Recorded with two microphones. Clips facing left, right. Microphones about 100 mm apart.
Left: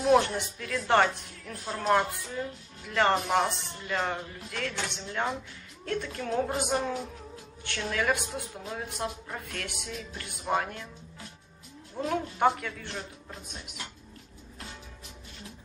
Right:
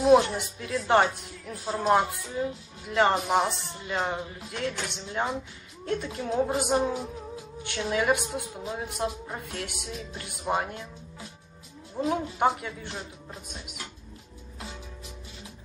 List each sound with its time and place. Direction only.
0.0 s a woman's voice: 15° right (ahead or behind)
12.0 s speech: 15° right (ahead or behind)